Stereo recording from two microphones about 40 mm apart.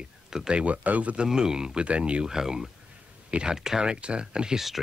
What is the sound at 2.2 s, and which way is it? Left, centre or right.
Speech, centre.